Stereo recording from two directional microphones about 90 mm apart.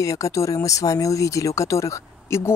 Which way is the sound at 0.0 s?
40° left (ahead or behind).